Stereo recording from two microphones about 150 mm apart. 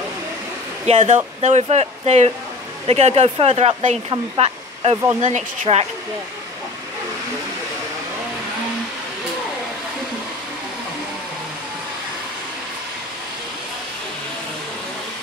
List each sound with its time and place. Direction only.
0.8 s speech: 50° right (ahead or behind)